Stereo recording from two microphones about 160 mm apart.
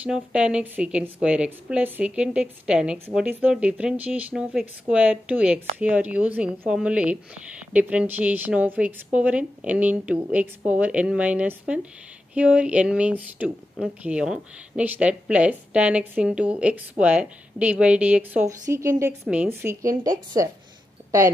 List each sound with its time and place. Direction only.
0.0 s speech: 5° right (ahead or behind)
19.2 s speech: 5° right (ahead or behind)